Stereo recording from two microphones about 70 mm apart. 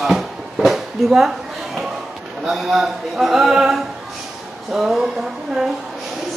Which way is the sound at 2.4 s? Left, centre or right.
Centre.